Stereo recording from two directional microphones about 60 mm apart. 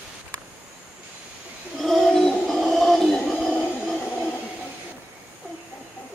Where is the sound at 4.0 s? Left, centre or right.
Left.